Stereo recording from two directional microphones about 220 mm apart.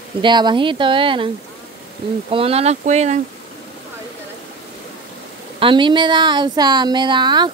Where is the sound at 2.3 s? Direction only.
25° right (ahead or behind).